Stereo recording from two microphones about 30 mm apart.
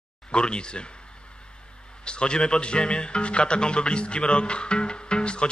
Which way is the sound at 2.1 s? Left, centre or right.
Left.